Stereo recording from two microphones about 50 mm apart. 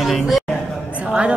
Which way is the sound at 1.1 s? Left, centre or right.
Centre.